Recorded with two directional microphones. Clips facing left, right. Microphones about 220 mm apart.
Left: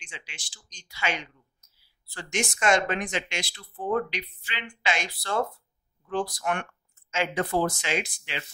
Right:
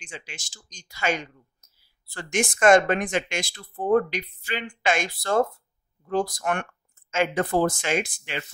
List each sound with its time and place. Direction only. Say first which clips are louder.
0.0 s speech: right 6 dB; 45° right (ahead or behind)